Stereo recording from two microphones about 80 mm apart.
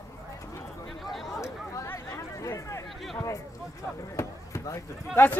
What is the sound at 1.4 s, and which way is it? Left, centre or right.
Chatter, left.